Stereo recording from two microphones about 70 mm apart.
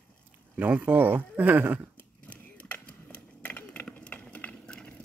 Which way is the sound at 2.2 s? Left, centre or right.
Left.